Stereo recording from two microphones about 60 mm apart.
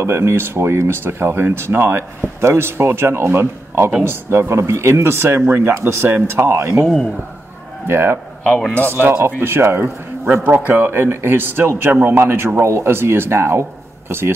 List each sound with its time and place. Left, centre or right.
0.0 s speech: right
7.8 s speech: right